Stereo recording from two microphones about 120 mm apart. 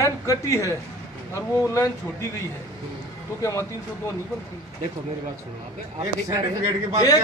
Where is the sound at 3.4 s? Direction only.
25° left (ahead or behind).